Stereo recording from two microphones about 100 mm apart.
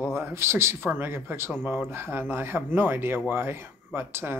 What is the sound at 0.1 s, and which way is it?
Speech, 25° right (ahead or behind).